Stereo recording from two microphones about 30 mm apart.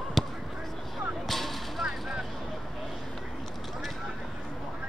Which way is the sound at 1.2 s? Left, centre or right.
Centre.